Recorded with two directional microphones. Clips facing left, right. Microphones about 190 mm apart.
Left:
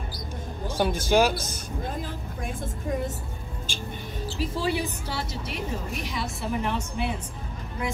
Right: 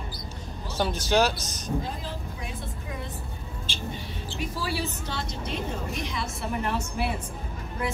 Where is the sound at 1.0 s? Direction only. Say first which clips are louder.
Left 2 dB; 10° left (ahead or behind).